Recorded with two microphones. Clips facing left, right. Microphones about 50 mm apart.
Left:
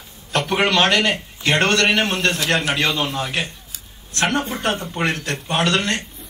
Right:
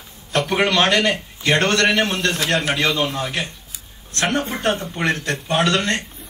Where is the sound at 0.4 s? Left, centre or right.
Left.